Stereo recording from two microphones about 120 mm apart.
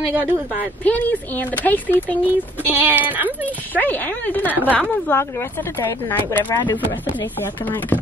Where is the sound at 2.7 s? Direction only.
15° right (ahead or behind).